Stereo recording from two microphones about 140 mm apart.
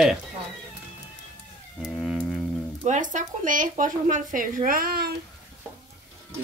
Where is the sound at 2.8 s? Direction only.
60° right (ahead or behind); by 5.1 s 90° right.